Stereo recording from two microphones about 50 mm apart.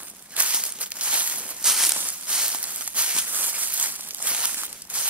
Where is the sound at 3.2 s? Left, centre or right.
Right.